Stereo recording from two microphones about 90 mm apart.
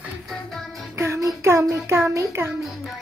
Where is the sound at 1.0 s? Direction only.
35° right (ahead or behind).